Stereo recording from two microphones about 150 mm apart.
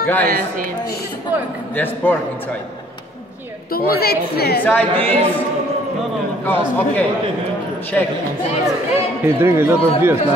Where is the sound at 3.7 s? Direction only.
90° left.